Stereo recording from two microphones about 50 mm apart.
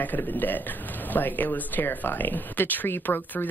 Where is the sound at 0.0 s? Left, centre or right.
Left.